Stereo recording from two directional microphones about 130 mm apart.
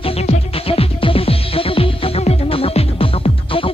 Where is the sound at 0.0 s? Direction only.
50° left (ahead or behind).